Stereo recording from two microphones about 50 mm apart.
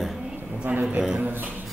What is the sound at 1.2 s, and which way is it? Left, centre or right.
Speech, right.